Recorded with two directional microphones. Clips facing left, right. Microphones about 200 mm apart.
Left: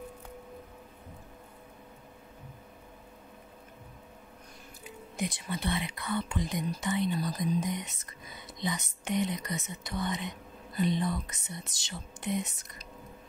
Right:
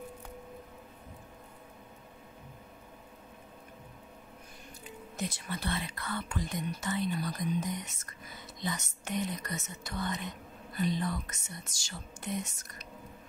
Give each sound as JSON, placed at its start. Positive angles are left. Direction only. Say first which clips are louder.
{"t": 4.8, "sound": "speech", "louder": "left 3 dB", "side_deg": 15}
{"t": 7.2, "sound": "speech", "louder": "left 3 dB", "side_deg": 35}
{"t": 8.5, "sound": "speech", "louder": "left 3 dB", "side_deg": 15}